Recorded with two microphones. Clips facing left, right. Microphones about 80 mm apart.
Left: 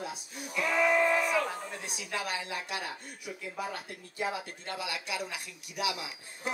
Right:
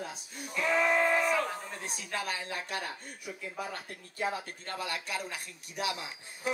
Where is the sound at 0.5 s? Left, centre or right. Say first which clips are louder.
Left 1 dB; right.